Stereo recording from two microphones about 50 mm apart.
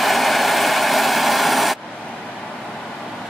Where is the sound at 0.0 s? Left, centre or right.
Centre.